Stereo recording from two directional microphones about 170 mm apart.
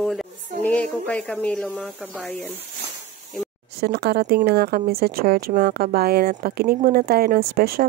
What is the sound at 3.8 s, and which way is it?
Speech, 70° right (ahead or behind).